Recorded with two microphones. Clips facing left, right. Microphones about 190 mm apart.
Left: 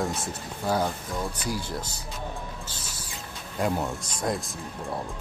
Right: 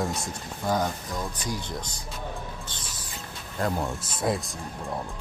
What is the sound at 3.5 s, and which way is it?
Speech, 10° left (ahead or behind).